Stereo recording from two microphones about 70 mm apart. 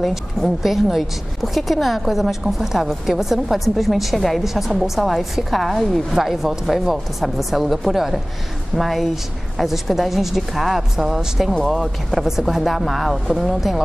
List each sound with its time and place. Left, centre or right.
0.0 s a woman's voice: centre